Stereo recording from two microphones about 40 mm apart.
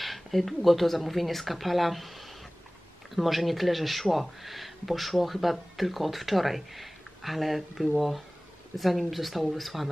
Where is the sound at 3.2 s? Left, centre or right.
Centre.